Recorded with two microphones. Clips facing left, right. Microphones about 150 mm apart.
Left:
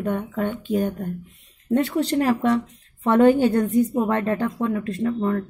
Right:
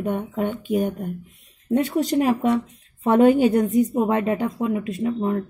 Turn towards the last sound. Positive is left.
turn(degrees=-20)  # may be behind; listen again after turning